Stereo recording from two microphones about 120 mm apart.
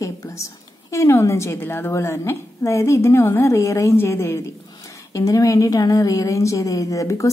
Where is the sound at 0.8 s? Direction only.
25° left (ahead or behind).